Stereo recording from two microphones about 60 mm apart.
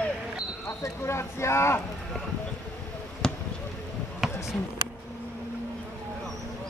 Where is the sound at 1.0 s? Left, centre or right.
Left.